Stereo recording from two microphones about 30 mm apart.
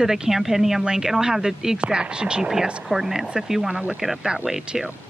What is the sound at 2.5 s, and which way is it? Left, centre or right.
Speech, centre.